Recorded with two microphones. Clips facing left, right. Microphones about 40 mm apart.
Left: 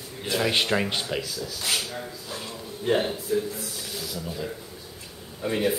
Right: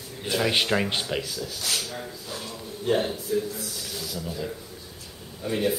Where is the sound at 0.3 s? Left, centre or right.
Centre.